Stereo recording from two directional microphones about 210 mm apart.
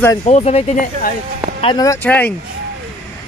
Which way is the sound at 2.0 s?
10° left (ahead or behind).